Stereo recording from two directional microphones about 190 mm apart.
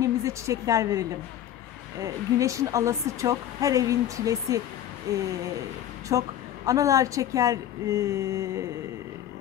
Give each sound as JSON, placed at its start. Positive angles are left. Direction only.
{"t": 0.0, "sound": "a woman's voice", "side_deg": -15}
{"t": 2.3, "sound": "a woman's voice", "side_deg": -15}
{"t": 6.0, "sound": "a woman's voice", "side_deg": -15}